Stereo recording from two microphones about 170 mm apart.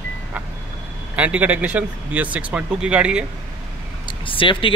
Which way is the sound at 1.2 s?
10° right (ahead or behind).